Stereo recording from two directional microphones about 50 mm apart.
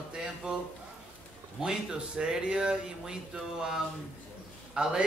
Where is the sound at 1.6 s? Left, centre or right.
Centre.